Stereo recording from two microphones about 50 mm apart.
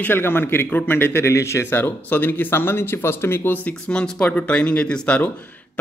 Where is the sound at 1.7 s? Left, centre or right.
Left.